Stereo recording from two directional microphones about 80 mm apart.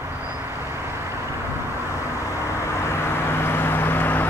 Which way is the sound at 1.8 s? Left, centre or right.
Left.